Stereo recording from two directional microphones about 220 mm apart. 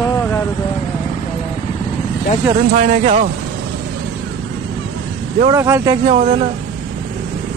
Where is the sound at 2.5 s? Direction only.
30° right (ahead or behind).